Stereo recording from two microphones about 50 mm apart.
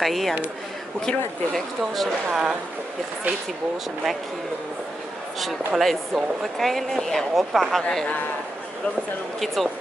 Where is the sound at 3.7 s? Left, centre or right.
Centre.